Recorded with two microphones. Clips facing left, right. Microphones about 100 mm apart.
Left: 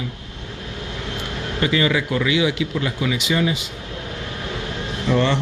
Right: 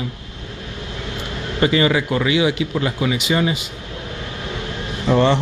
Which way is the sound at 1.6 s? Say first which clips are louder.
Right 3 dB; 35° right (ahead or behind).